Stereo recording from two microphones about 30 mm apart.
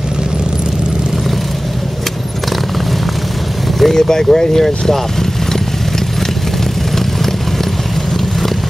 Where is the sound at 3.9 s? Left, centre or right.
Centre.